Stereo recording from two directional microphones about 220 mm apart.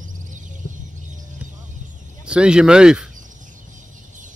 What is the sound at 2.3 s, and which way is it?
Speech, 5° right (ahead or behind).